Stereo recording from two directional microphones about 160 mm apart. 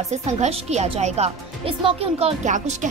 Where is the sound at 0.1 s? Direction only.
40° right (ahead or behind).